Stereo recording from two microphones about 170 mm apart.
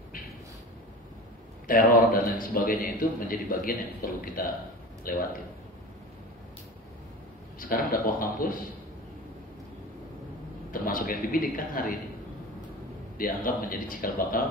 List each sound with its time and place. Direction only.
1.7 s a man's voice: 55° left (ahead or behind)
7.5 s a man's voice: 55° left (ahead or behind)
10.7 s a man's voice: 55° left (ahead or behind)
13.2 s a man's voice: 55° left (ahead or behind)